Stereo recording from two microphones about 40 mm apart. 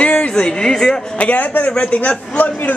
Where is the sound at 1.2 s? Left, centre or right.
Left.